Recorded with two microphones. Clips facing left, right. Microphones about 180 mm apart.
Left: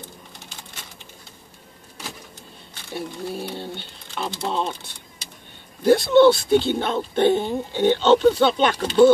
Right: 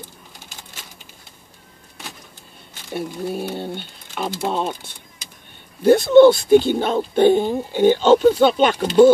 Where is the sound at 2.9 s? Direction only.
60° right (ahead or behind).